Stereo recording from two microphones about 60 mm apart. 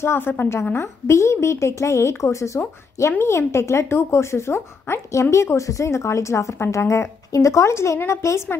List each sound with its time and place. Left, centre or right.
0.0 s a woman's voice: left
0.7 s a woman's voice: left